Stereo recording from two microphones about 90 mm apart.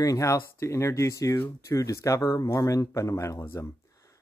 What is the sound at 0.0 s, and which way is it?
A man's voice, 35° left (ahead or behind).